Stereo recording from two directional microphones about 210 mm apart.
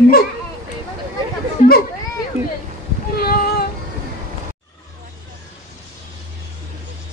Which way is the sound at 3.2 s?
45° left (ahead or behind).